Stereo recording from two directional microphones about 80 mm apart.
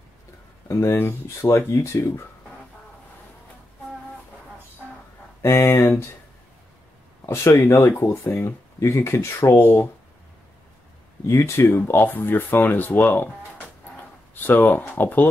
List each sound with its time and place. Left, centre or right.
0.7 s speech: left
5.4 s speech: left
7.2 s speech: left
9.6 s speech: left
11.2 s speech: left
14.3 s speech: left